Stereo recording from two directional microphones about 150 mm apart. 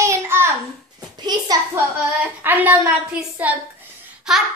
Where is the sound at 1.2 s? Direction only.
30° right (ahead or behind).